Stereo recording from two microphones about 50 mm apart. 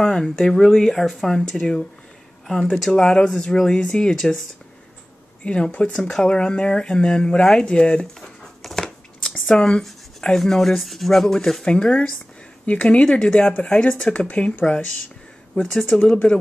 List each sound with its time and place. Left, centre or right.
0.0 s speech: centre
2.9 s speech: centre
5.4 s speech: left
8.2 s a sound: centre
9.5 s speech: centre
11.7 s speech: centre
14.2 s speech: left
15.6 s speech: centre
16.0 s speech: left